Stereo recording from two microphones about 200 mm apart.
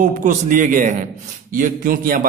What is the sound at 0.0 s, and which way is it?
A man's voice, 40° right (ahead or behind).